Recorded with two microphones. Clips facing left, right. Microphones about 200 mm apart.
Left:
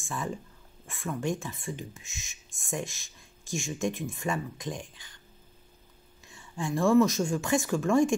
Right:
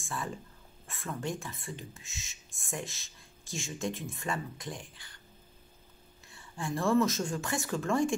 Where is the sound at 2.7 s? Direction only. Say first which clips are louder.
Left 5 dB; 15° left (ahead or behind).